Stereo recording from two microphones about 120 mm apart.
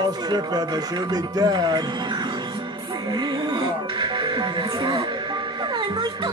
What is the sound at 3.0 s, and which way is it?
Music, 40° right (ahead or behind).